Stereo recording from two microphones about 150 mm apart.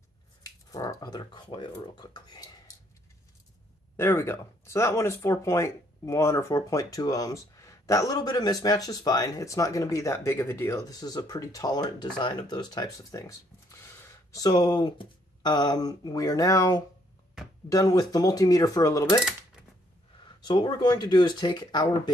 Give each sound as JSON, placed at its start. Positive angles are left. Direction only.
{"t": 0.7, "sound": "speech", "side_deg": 20}
{"t": 3.9, "sound": "speech", "side_deg": 15}
{"t": 20.4, "sound": "speech", "side_deg": 30}